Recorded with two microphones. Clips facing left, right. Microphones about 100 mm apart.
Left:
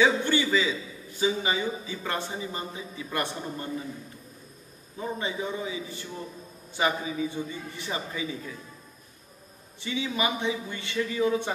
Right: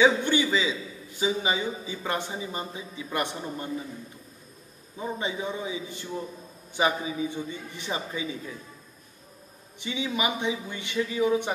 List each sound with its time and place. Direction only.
0.0 s a man's voice: 20° right (ahead or behind)
4.9 s a man's voice: 20° right (ahead or behind)
9.8 s a man's voice: 20° right (ahead or behind)